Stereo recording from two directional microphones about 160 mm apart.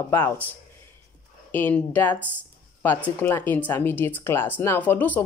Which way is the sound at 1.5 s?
10° left (ahead or behind).